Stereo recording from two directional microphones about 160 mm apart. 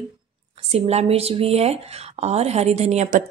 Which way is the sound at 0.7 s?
40° right (ahead or behind).